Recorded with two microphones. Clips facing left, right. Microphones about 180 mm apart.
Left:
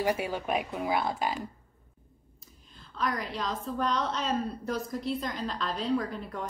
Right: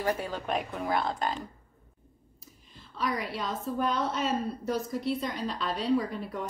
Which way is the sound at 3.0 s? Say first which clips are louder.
Even; 5° right (ahead or behind).